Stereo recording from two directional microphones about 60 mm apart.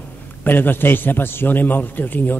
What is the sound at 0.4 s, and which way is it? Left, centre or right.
A man's voice, left.